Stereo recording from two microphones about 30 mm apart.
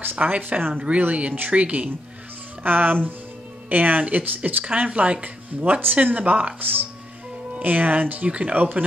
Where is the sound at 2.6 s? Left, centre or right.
Right.